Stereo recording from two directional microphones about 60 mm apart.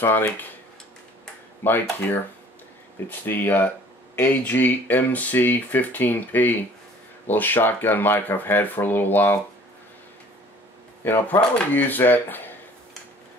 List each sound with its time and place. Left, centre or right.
1.6 s speech: left
11.1 s speech: left